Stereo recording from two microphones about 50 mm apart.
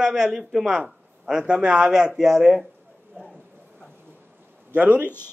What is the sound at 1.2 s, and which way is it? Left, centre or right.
A man's voice, centre.